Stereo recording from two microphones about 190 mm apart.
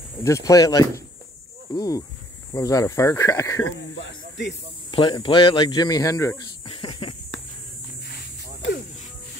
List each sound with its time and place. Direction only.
0.2 s speech: 15° left (ahead or behind)
4.9 s speech: 25° left (ahead or behind)
6.6 s a sound: 30° left (ahead or behind)